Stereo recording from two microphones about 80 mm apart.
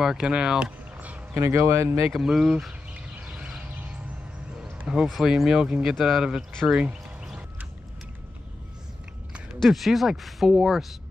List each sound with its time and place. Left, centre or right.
0.0 s speech: centre
1.3 s speech: right
2.1 s a sound: centre
4.7 s speech: centre
9.6 s speech: centre